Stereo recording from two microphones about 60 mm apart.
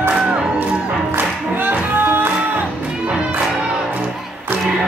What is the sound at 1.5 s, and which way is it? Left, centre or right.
Music, right.